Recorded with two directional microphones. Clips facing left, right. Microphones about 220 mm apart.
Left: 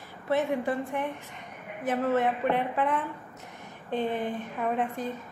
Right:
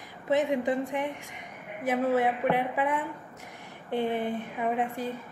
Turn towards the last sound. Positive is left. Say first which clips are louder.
# even
turn(degrees=-10)  # may be behind; listen again after turning